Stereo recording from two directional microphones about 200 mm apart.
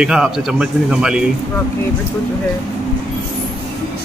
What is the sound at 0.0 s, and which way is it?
A man's voice, 5° right (ahead or behind).